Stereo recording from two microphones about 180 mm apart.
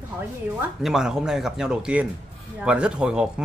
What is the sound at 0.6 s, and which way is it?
Speech, 5° right (ahead or behind).